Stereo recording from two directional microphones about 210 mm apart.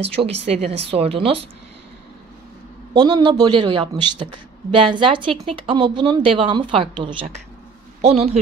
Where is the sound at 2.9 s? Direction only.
20° right (ahead or behind).